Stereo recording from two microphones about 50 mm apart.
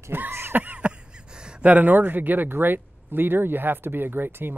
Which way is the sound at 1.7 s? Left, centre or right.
Right.